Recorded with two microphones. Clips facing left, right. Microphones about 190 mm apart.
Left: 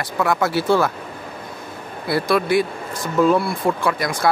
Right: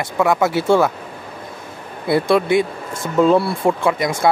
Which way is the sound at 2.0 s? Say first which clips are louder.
Right 4 dB; 20° right (ahead or behind).